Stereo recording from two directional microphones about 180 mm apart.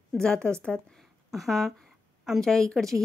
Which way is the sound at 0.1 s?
5° left (ahead or behind).